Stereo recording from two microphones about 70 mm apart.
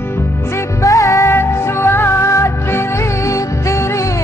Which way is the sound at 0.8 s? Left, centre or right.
Left.